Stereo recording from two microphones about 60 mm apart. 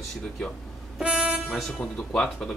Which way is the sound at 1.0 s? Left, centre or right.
Centre.